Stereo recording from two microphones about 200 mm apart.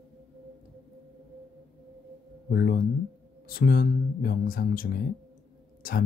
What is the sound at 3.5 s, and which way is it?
Speech, 45° left (ahead or behind).